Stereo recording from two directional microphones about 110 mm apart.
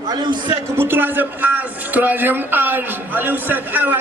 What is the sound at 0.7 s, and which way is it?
A man's voice, 20° right (ahead or behind).